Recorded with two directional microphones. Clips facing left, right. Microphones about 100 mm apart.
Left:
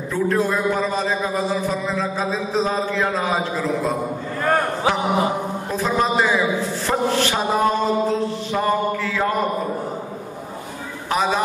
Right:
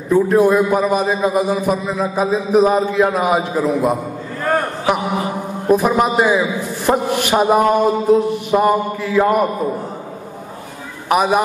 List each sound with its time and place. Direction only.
0.1 s a man's voice: 15° right (ahead or behind)
5.7 s a man's voice: 15° right (ahead or behind)
11.1 s a man's voice: 15° right (ahead or behind)